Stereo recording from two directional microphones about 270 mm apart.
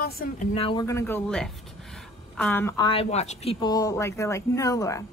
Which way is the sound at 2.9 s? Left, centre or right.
Left.